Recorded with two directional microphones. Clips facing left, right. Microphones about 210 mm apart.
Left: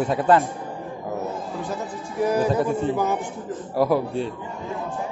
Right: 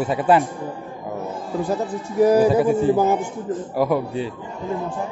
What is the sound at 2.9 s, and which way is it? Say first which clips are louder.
Speech: right 5 dB; 30° right (ahead or behind).